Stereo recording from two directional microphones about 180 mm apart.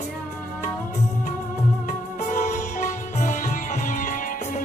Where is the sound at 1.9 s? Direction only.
45° left (ahead or behind).